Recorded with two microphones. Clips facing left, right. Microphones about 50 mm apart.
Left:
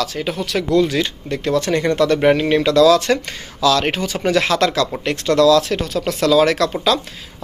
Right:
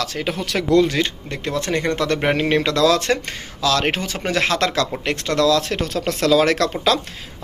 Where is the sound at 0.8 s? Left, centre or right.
Right.